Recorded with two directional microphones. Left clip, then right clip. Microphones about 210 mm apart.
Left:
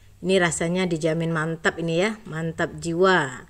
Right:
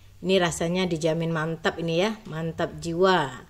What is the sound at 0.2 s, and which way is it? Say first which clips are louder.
Speech: left 2 dB; 10° left (ahead or behind).